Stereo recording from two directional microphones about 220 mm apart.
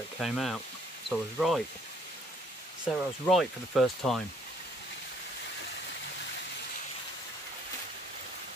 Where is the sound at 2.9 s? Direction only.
Centre (ahead or behind).